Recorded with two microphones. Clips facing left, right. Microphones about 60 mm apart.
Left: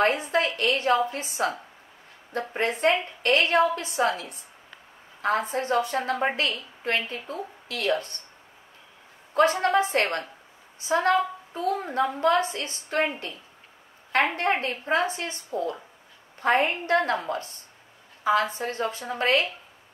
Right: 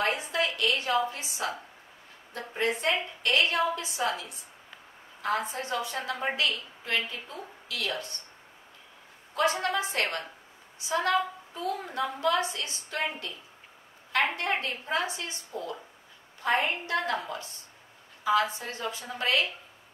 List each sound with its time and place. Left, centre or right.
0.0 s a woman's voice: left
9.3 s a woman's voice: left